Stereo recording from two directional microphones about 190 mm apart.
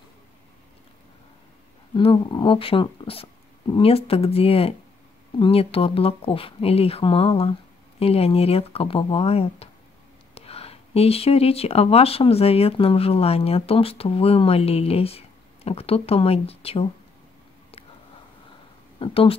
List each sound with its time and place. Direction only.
2.0 s speech: 25° left (ahead or behind)
18.9 s speech: 30° left (ahead or behind)